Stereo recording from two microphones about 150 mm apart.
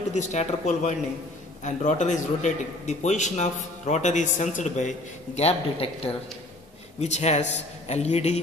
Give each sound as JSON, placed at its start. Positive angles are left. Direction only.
{"t": 0.1, "sound": "a man's voice", "side_deg": 50}